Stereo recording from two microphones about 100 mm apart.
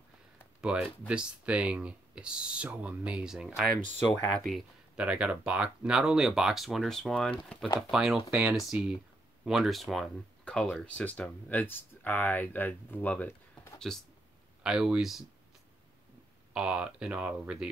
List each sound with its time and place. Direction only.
0.6 s speech: 10° right (ahead or behind)
4.9 s speech: 10° right (ahead or behind); by 7.7 s 10° left (ahead or behind)
7.9 s speech: 5° right (ahead or behind)
8.3 s speech: 20° right (ahead or behind)
9.4 s speech: centre (ahead or behind); by 13.3 s 15° left (ahead or behind)
13.9 s speech: centre (ahead or behind)
16.5 s speech: 10° right (ahead or behind)